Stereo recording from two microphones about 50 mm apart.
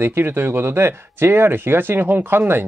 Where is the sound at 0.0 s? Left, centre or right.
Right.